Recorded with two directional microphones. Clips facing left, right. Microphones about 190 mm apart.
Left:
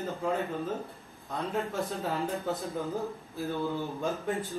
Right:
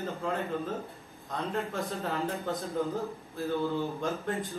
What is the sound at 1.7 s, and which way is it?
Speech, centre (ahead or behind).